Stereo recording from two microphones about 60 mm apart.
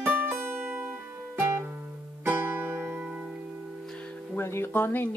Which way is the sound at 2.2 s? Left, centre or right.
Right.